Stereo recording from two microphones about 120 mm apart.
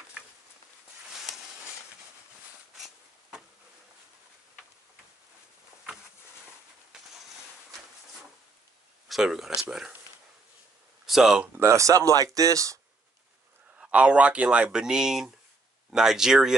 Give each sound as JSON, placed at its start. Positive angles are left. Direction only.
{"t": 1.2, "sound": "a sound", "side_deg": 0}
{"t": 2.8, "sound": "a sound", "side_deg": -5}
{"t": 9.1, "sound": "speech", "side_deg": 0}
{"t": 11.1, "sound": "speech", "side_deg": -5}
{"t": 11.6, "sound": "speech", "side_deg": -25}
{"t": 13.7, "sound": "speech", "side_deg": -10}